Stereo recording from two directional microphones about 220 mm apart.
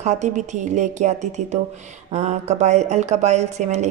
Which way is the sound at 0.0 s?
30° right (ahead or behind).